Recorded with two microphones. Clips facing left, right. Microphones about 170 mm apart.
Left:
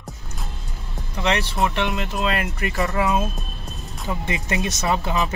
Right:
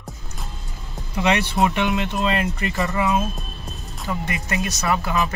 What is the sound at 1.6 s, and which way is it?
Speech, centre (ahead or behind).